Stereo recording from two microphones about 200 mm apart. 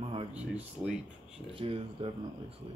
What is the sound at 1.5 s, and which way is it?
Speech, 30° right (ahead or behind).